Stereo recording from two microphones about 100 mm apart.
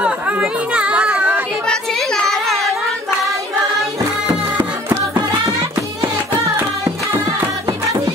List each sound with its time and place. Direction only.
0.0 s chatter: 10° right (ahead or behind)
1.7 s a sound: 5° left (ahead or behind)
6.8 s music: 30° right (ahead or behind)